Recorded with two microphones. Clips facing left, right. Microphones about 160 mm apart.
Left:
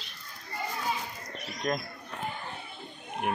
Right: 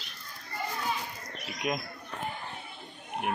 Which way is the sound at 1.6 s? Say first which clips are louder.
Left 1 dB; 10° right (ahead or behind).